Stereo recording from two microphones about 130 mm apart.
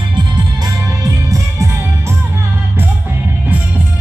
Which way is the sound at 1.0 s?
25° right (ahead or behind).